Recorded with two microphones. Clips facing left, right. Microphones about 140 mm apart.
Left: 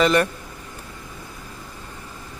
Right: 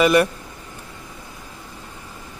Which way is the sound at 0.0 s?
10° right (ahead or behind).